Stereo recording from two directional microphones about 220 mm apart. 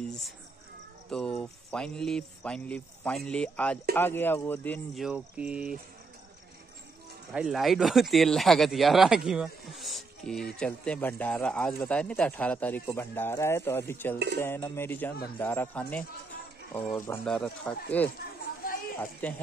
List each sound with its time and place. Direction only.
1.1 s speech: 5° left (ahead or behind)
7.3 s speech: centre (ahead or behind)
19.2 s speech: 5° left (ahead or behind)